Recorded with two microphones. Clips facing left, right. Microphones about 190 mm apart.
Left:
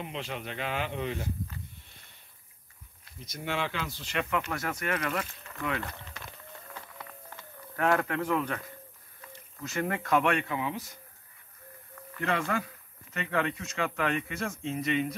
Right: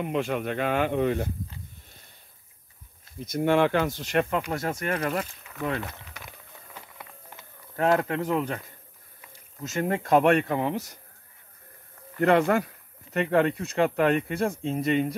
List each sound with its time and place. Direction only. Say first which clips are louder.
0.0 s speech: right 10 dB; 55° right (ahead or behind)
3.3 s speech: right 12 dB; 55° right (ahead or behind)
4.5 s speech: right 4 dB; 25° right (ahead or behind)
6.1 s a sound: even; 15° right (ahead or behind)
8.0 s speech: right 3 dB; 30° right (ahead or behind); by 11.0 s 55° right (ahead or behind)
12.2 s speech: right 10 dB; 50° right (ahead or behind); by 14.6 s 35° right (ahead or behind)
14.6 s speech: right 2 dB; 50° right (ahead or behind)